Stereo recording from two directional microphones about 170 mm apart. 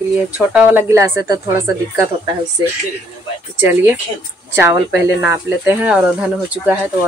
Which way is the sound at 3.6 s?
15° right (ahead or behind).